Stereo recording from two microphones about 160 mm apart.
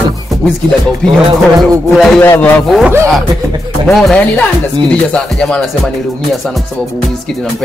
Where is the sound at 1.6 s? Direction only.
Centre (ahead or behind).